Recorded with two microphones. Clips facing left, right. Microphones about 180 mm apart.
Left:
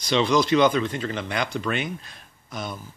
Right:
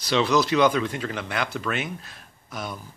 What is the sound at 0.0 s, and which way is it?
Speech, 5° right (ahead or behind).